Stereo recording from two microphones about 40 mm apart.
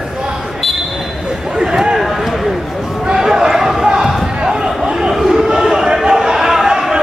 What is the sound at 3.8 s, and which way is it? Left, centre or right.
Basketball bounce, right.